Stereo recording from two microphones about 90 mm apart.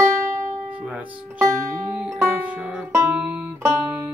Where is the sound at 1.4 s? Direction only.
30° right (ahead or behind).